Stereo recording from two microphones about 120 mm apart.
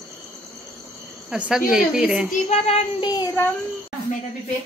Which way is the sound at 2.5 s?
60° left (ahead or behind).